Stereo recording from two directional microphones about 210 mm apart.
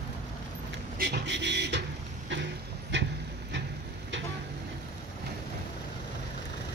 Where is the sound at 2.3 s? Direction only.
55° right (ahead or behind).